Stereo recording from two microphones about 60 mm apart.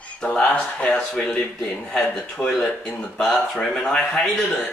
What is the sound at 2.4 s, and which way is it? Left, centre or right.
A man's voice, centre.